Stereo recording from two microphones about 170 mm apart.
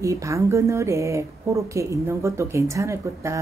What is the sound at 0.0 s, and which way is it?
Speech, 20° right (ahead or behind).